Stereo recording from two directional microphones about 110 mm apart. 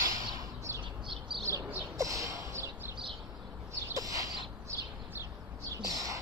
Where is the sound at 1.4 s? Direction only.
30° right (ahead or behind).